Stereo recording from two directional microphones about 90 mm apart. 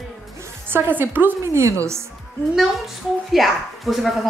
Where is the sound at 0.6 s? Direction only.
25° right (ahead or behind).